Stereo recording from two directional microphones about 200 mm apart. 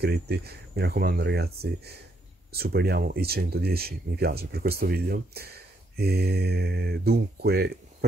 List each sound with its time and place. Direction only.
0.0 s speech: 50° right (ahead or behind)